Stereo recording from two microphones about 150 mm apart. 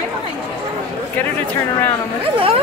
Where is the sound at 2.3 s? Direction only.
35° right (ahead or behind).